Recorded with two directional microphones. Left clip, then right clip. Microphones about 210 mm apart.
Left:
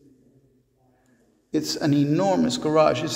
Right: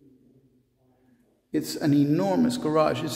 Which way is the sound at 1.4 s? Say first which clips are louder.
Left 2 dB; 5° right (ahead or behind).